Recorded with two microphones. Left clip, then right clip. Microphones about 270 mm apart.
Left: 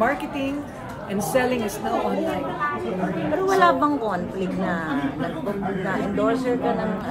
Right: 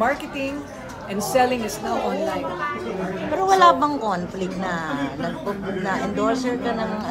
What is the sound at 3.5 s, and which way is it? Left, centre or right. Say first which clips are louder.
A woman's voice: right 3 dB; right.